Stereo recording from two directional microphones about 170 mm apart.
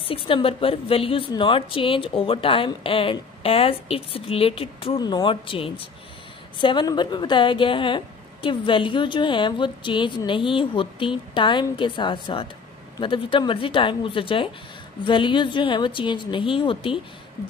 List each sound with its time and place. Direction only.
0.0 s a woman's voice: 35° left (ahead or behind)